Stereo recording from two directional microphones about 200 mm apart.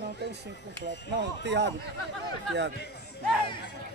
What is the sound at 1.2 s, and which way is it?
Speech, 60° right (ahead or behind).